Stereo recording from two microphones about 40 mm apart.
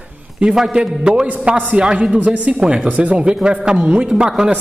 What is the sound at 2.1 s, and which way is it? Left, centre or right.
A woman's voice, right.